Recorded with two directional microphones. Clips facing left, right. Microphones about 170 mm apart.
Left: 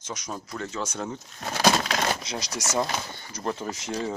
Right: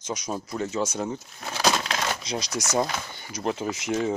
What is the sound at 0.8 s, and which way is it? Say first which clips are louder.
Speech: right 4 dB; 10° right (ahead or behind).